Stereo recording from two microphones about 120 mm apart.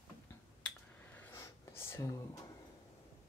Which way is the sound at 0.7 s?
15° left (ahead or behind).